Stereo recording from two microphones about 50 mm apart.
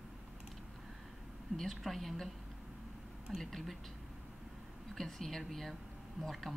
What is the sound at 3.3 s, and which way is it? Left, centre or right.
Speech, centre.